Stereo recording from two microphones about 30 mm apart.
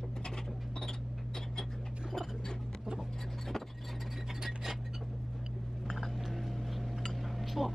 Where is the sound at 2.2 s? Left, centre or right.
Centre.